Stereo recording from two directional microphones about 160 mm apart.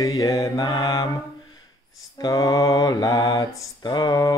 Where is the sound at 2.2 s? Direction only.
25° left (ahead or behind).